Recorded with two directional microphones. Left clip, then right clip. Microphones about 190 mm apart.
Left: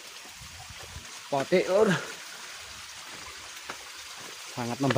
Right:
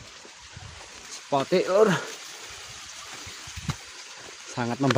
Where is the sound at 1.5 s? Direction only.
15° right (ahead or behind).